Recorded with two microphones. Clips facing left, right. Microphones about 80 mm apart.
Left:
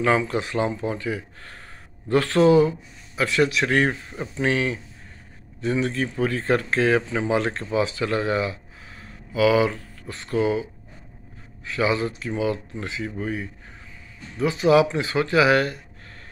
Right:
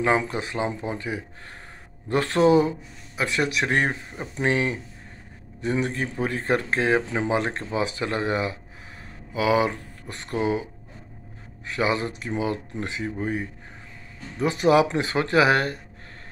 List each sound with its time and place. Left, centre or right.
0.3 s speech: right
14.4 s speech: right